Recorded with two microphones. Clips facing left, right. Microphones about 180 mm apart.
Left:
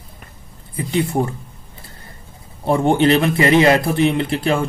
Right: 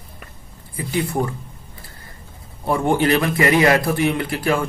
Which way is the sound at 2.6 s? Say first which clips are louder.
Left 3 dB; 25° left (ahead or behind).